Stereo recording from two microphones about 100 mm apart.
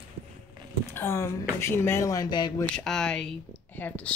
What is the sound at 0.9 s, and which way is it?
Speech, 25° left (ahead or behind).